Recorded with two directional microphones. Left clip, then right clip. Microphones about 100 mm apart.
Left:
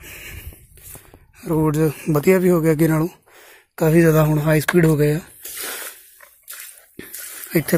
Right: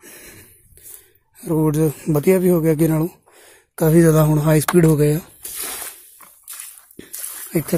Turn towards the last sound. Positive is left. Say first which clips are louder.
# left 2 dB
turn(degrees=0)  # may be behind; listen again after turning